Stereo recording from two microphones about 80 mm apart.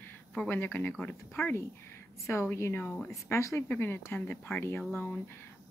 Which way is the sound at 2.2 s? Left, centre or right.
Left.